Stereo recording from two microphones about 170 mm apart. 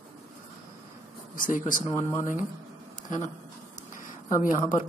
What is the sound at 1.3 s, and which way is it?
Speech, 55° left (ahead or behind).